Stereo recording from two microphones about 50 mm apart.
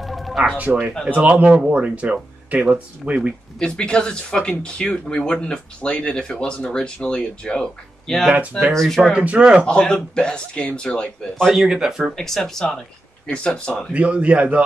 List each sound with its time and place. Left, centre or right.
0.0 s music: centre
1.1 s a man's voice: right
3.5 s speech: centre
8.3 s a man's voice: right
8.7 s speech: centre
9.1 s a man's voice: right
9.7 s speech: centre
11.5 s speech: centre
12.2 s speech: centre
13.3 s speech: left
13.9 s a man's voice: right